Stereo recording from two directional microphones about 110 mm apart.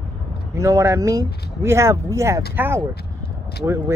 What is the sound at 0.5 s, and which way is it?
Speech, 25° right (ahead or behind).